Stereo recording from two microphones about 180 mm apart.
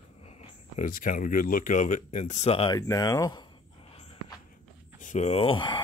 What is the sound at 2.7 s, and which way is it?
Speech, 20° left (ahead or behind).